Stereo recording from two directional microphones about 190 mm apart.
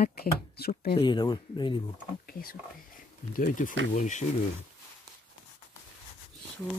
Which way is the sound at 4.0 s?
40° left (ahead or behind).